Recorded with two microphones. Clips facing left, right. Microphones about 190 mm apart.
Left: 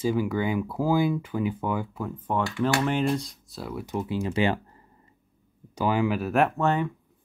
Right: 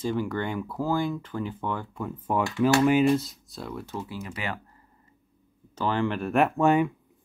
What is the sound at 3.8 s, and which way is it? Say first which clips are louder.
Speech: left 6 dB; 15° left (ahead or behind).